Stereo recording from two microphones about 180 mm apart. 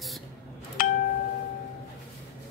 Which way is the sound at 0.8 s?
55° left (ahead or behind).